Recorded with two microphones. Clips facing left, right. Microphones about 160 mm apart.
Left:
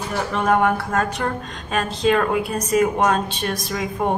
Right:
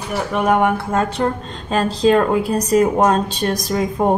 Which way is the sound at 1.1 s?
30° right (ahead or behind).